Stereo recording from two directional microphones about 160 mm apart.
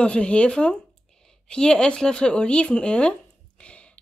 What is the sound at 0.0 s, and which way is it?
Speech, 5° left (ahead or behind).